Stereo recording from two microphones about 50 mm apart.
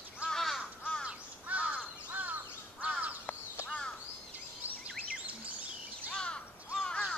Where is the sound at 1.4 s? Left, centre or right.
Right.